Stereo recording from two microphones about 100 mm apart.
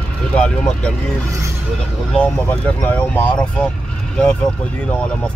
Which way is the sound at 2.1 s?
10° left (ahead or behind).